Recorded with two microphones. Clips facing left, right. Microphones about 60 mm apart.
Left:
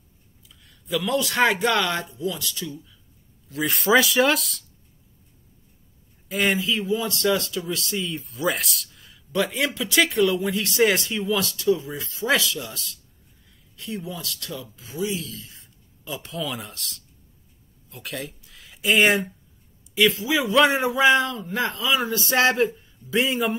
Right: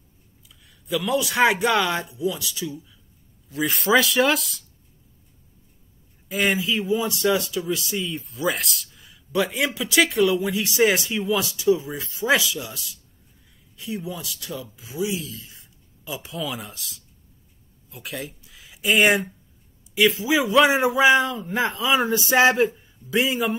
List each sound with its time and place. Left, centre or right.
0.7 s speech: centre
6.2 s speech: centre
20.0 s a sound: centre
20.3 s speech: centre
21.5 s speech: right
22.1 s a sound: centre
22.8 s a man's voice: centre